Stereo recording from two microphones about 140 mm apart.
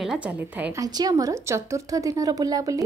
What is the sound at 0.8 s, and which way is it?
A woman's voice, 25° right (ahead or behind).